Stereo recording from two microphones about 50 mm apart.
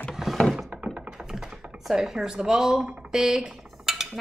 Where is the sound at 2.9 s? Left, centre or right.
Centre.